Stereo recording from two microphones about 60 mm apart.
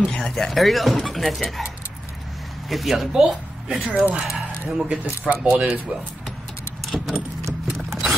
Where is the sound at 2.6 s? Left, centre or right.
Centre.